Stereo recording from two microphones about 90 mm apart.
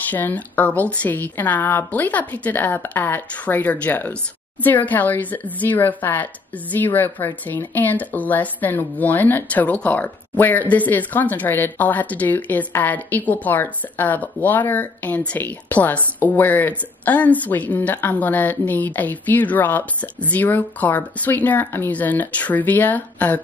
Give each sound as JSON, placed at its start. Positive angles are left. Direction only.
{"t": 0.1, "sound": "speech", "side_deg": 20}